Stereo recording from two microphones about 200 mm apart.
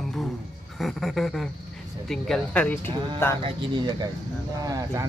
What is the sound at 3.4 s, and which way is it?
Speech, 20° right (ahead or behind).